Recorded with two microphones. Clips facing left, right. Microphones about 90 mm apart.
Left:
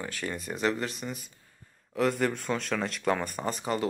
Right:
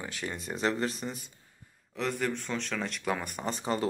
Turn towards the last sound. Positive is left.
turn(degrees=-30)  # may be behind; listen again after turning